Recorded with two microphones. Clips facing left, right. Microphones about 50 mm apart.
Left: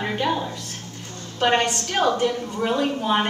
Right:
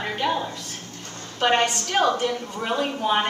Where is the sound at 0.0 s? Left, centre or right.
Centre.